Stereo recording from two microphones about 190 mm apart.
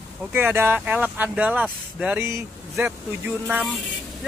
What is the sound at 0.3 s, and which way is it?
Speech, 10° right (ahead or behind).